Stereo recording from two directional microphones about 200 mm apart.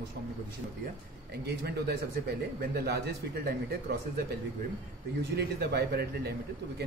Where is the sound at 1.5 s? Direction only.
55° right (ahead or behind).